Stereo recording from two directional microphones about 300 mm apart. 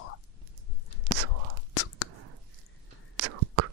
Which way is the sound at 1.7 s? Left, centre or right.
Left.